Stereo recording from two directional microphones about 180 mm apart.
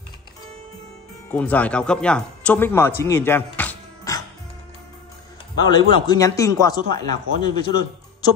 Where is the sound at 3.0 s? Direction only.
15° left (ahead or behind).